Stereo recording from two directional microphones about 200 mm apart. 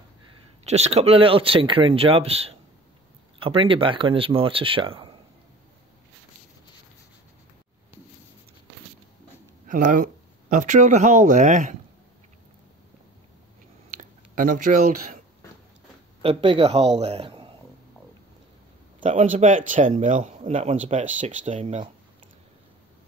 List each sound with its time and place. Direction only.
0.7 s speech: 35° right (ahead or behind)
9.7 s speech: 40° right (ahead or behind)
13.8 s a sound: 40° right (ahead or behind)
16.2 s speech: 30° right (ahead or behind)
18.9 s a man's voice: 40° right (ahead or behind)